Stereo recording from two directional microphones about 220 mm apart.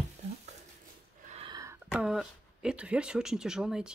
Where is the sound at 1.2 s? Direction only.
25° right (ahead or behind).